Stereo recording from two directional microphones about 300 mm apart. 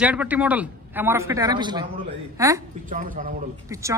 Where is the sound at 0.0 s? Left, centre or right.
Centre.